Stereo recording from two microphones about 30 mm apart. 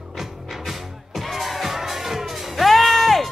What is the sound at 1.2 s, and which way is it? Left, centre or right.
Music, centre.